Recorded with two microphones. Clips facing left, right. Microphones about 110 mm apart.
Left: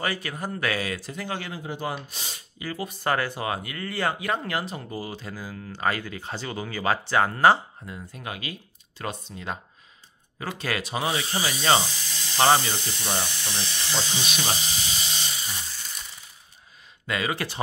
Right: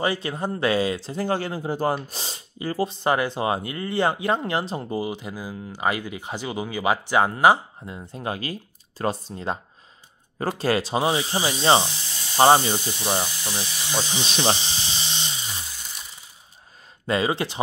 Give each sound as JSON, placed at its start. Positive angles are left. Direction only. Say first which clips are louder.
{"t": 0.0, "sound": "speech", "louder": "right 5 dB", "side_deg": -25}
{"t": 14.2, "sound": "electric toothbrush", "louder": "right 5 dB", "side_deg": -30}
{"t": 17.0, "sound": "speech", "louder": "right 5 dB", "side_deg": -30}